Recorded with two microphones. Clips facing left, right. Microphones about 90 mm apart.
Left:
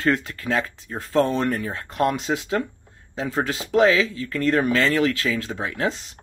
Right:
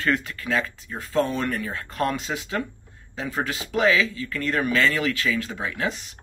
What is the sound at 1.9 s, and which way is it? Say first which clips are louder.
Speech: left 4 dB; 20° left (ahead or behind).